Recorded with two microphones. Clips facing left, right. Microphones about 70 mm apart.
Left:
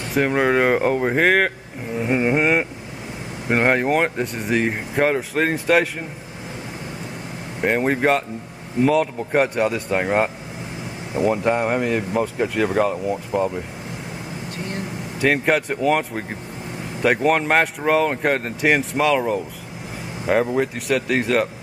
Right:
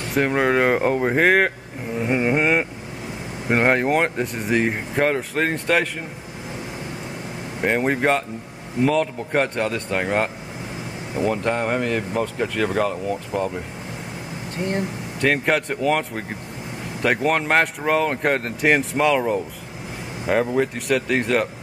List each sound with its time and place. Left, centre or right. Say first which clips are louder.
0.1 s speech: left 1 dB; centre
7.6 s speech: left 1 dB; centre
15.1 s speech: left 1 dB; centre